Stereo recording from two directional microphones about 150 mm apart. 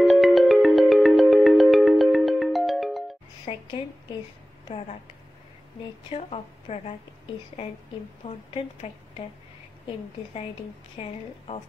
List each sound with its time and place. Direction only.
0.0 s music: centre (ahead or behind)
3.5 s a sound: 40° left (ahead or behind)
4.6 s speech: 40° left (ahead or behind)
6.0 s a woman's voice: 45° left (ahead or behind)
8.2 s a woman's voice: 50° left (ahead or behind)
11.0 s a woman's voice: 40° left (ahead or behind)